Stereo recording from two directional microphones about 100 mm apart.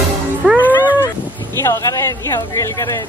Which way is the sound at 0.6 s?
20° left (ahead or behind).